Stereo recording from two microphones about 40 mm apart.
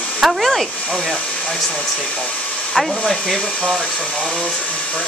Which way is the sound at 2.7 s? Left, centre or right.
Centre.